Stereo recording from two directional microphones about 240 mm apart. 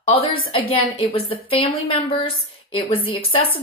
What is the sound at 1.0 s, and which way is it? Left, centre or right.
A woman's voice, left.